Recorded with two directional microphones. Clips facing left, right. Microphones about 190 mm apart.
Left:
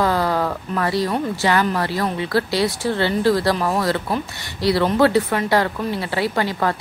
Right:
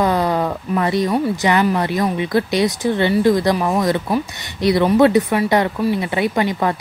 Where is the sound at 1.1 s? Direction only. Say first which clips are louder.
Right 3 dB; 15° right (ahead or behind).